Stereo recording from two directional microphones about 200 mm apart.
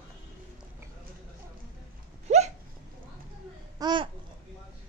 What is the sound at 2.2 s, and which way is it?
Hiccup, 35° right (ahead or behind).